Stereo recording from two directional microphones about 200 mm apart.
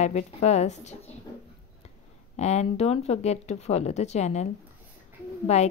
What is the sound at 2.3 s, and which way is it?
A woman's voice, 35° left (ahead or behind).